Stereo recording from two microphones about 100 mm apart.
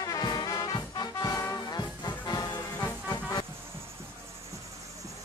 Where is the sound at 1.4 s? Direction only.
40° left (ahead or behind).